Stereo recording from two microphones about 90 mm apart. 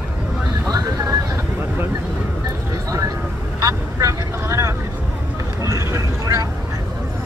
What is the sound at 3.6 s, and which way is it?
Vehicle, 35° right (ahead or behind).